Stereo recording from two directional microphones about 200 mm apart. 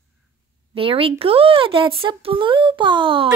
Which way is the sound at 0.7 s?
25° right (ahead or behind).